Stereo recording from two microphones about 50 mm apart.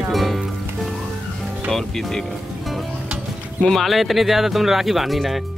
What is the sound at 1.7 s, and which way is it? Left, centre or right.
Speech, centre.